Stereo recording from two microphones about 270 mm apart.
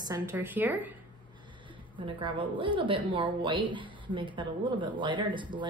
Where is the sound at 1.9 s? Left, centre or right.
Centre.